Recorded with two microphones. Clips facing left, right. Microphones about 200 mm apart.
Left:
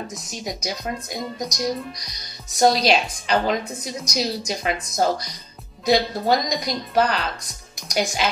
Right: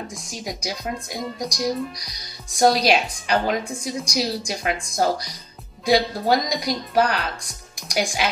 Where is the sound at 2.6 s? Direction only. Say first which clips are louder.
Even; 10° right (ahead or behind).